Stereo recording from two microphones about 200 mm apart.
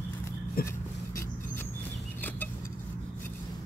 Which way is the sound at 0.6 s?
50° left (ahead or behind).